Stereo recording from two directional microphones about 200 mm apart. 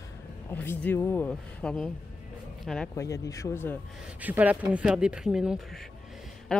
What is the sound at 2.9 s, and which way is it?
Speech, 15° left (ahead or behind).